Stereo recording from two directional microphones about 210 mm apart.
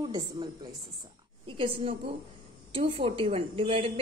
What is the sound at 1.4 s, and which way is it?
A woman's voice, 25° right (ahead or behind).